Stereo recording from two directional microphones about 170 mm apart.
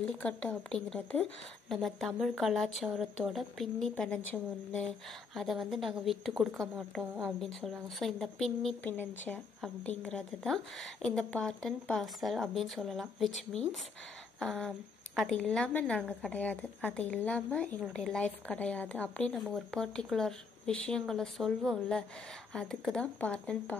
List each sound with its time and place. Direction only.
0.0 s a woman's voice: 5° left (ahead or behind)